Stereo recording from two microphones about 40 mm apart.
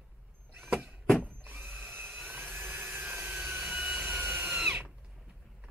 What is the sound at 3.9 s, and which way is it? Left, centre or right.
Wood, right.